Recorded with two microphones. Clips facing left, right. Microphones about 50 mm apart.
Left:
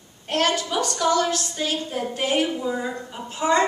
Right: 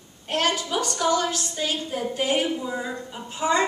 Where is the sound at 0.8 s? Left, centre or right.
Centre.